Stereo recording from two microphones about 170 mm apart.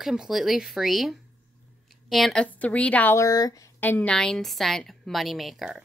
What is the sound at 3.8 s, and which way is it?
A woman's voice, 10° left (ahead or behind).